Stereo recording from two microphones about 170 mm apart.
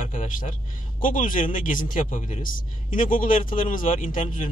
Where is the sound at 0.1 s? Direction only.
50° left (ahead or behind).